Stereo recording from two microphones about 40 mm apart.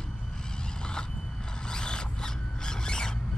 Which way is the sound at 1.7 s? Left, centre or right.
Left.